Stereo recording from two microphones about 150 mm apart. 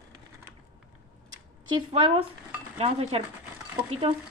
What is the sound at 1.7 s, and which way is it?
A woman's voice, 35° right (ahead or behind).